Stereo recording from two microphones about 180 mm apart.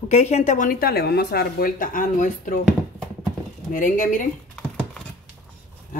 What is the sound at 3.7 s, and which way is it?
Speech, 45° left (ahead or behind).